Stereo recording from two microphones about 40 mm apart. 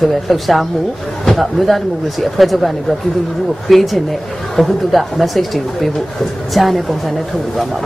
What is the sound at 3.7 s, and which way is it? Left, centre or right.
Speech, centre.